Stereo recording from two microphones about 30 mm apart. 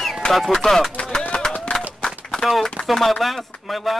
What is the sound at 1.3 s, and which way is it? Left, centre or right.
Run, left.